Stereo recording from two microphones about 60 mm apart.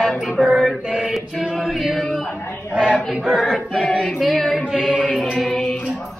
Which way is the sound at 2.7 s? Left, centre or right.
Right.